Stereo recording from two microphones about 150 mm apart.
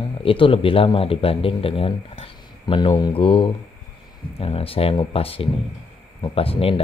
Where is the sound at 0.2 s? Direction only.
35° left (ahead or behind).